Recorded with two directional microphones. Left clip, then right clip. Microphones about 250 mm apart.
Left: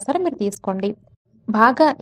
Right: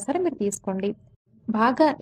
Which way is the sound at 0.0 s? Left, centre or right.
Centre.